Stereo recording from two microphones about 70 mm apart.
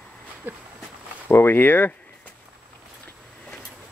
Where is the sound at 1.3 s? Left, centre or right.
Left.